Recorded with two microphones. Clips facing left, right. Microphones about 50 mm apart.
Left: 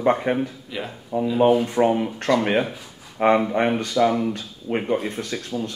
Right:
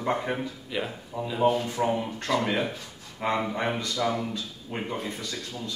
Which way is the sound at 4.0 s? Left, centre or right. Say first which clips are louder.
Left 10 dB; left.